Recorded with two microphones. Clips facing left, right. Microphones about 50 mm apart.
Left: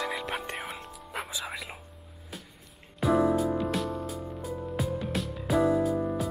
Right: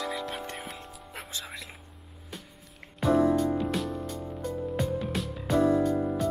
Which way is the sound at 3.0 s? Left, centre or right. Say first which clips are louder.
Right 1 dB; centre.